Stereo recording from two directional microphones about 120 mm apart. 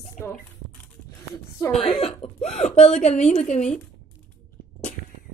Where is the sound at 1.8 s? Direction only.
55° left (ahead or behind).